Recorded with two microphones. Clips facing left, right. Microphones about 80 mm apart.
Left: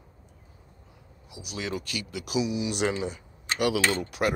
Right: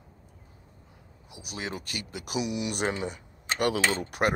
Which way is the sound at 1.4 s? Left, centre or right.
Right.